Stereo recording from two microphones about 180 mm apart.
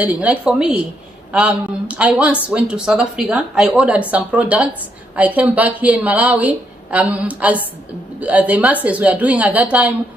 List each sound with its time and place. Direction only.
0.0 s a woman's voice: 10° right (ahead or behind)